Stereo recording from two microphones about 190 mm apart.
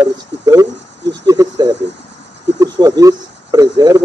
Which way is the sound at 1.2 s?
20° right (ahead or behind).